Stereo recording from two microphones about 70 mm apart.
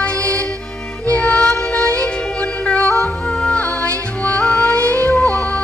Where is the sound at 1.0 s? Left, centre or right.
Centre.